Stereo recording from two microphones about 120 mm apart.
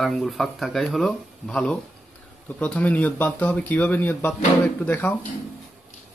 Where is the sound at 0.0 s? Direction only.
Centre (ahead or behind); by 5.2 s 15° left (ahead or behind).